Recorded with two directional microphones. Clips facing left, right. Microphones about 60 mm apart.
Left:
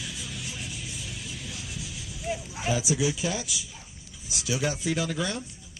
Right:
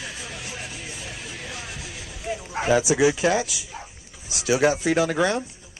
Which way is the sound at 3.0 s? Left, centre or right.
Right.